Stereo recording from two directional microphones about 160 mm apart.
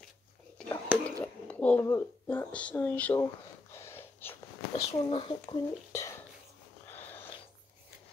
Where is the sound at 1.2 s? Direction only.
10° left (ahead or behind).